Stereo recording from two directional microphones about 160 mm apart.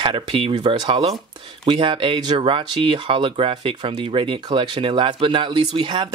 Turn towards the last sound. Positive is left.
turn(degrees=-30)  # may be behind; listen again after turning